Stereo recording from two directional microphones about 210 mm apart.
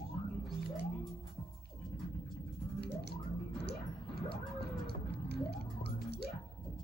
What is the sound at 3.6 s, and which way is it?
Whale vocalization, 50° left (ahead or behind).